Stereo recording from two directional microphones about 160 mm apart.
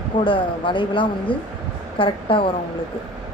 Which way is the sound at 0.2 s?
30° left (ahead or behind).